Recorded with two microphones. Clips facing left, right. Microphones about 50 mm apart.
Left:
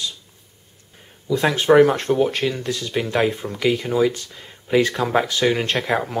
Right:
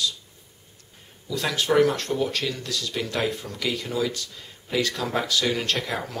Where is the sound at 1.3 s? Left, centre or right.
Left.